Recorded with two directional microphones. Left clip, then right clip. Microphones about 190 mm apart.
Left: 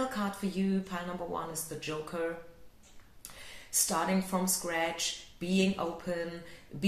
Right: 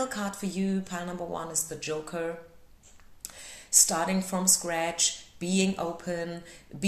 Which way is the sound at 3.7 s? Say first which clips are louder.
Right 5 dB; 40° right (ahead or behind).